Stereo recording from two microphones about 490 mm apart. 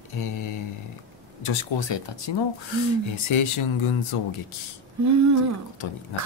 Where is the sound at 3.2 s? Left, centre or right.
Left.